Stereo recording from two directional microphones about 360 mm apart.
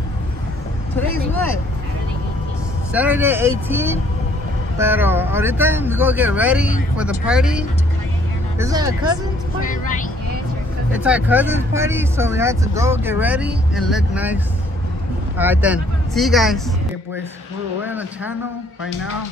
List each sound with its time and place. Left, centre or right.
2.9 s speech: centre
9.6 s speech: left
10.9 s speech: centre
17.8 s speech: centre